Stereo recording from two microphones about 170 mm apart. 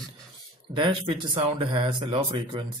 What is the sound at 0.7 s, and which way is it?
Speech, 30° right (ahead or behind).